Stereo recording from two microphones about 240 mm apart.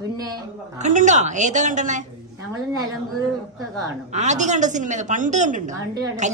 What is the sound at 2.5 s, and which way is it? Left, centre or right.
Speech, centre.